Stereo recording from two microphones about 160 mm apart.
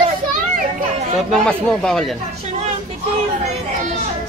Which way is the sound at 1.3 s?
5° left (ahead or behind).